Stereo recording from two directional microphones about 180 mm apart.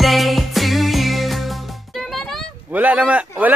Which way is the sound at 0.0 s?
Centre (ahead or behind).